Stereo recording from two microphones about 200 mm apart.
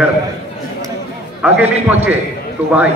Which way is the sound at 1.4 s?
5° right (ahead or behind).